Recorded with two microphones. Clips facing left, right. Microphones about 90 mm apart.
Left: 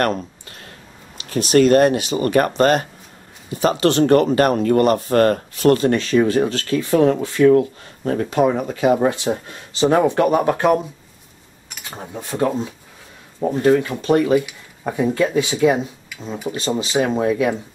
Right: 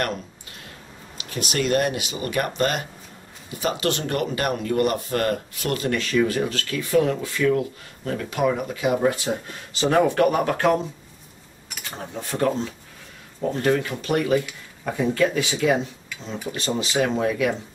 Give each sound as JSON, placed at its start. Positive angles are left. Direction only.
{"t": 1.3, "sound": "speech", "side_deg": 40}
{"t": 9.1, "sound": "speech", "side_deg": 25}
{"t": 12.0, "sound": "speech", "side_deg": 15}